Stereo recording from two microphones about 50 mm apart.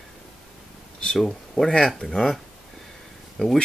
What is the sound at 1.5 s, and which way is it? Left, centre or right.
Speech, centre.